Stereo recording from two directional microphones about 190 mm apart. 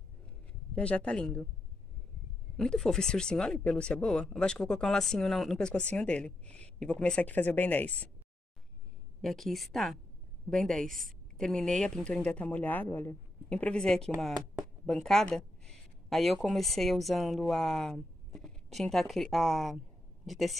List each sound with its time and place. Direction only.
0.7 s speech: 5° left (ahead or behind)
2.5 s speech: 5° left (ahead or behind)
9.2 s a woman's voice: centre (ahead or behind)